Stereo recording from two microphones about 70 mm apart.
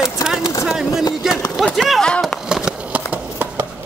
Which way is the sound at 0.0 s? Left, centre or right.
Centre.